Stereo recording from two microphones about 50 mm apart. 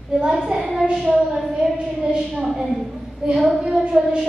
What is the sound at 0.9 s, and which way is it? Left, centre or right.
Speech, centre.